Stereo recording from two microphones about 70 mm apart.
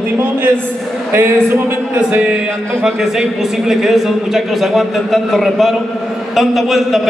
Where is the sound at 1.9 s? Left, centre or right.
Right.